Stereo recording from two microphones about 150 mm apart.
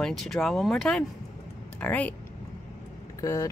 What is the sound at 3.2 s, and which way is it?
Speech, 20° left (ahead or behind).